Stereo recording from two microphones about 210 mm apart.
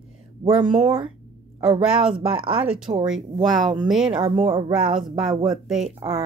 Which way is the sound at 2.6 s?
5° right (ahead or behind).